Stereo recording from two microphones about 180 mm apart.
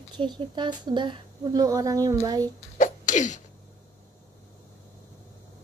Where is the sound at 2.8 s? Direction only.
45° left (ahead or behind).